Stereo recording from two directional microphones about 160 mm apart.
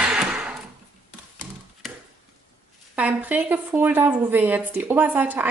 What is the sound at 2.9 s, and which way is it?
A woman's voice, 10° right (ahead or behind).